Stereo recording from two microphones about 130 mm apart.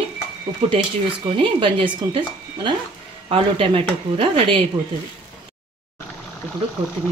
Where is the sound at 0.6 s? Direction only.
45° right (ahead or behind).